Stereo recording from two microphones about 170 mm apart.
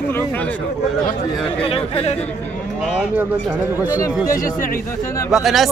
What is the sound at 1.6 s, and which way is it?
Speech, 35° left (ahead or behind).